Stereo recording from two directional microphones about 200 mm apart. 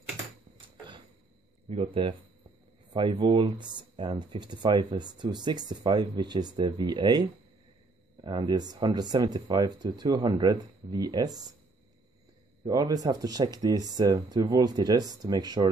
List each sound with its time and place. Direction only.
1.7 s speech: 25° right (ahead or behind)
12.6 s speech: 20° right (ahead or behind)